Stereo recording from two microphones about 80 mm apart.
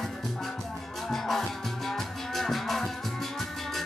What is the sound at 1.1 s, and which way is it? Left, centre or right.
Music, centre.